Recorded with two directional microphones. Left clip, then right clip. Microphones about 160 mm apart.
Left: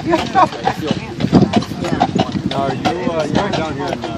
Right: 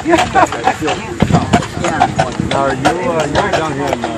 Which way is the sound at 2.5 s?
20° left (ahead or behind).